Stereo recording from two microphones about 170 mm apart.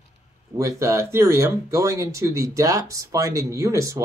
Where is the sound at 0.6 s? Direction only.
20° right (ahead or behind).